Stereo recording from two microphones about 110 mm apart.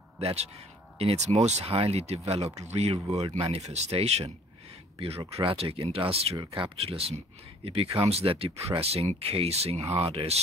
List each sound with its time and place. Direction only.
0.9 s speech: 75° right (ahead or behind)
4.9 s speech: 65° right (ahead or behind)